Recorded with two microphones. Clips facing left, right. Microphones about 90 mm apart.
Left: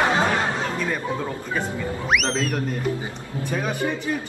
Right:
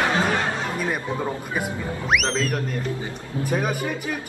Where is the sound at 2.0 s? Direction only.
Centre (ahead or behind).